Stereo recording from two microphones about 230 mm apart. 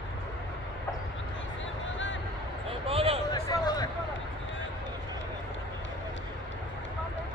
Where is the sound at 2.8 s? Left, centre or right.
Right.